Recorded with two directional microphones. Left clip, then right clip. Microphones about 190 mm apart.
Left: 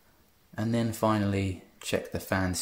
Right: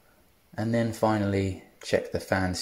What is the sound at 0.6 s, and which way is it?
Speech, centre (ahead or behind).